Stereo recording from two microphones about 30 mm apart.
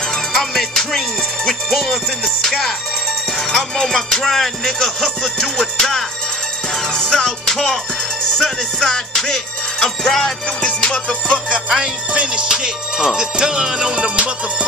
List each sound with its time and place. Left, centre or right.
0.1 s music: centre
1.7 s music: centre
3.3 s music: centre
7.5 s music: centre
8.7 s music: left
10.6 s music: left
11.3 s music: right
12.4 s music: right
13.9 s music: right